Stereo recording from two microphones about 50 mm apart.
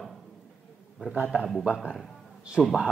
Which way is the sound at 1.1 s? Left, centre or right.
Right.